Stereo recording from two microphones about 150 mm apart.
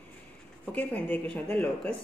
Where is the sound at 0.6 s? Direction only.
10° left (ahead or behind).